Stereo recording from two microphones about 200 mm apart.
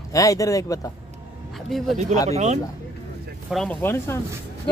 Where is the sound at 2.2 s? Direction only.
35° right (ahead or behind).